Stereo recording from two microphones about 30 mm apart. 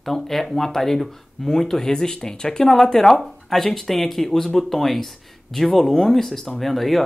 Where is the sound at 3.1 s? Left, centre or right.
Centre.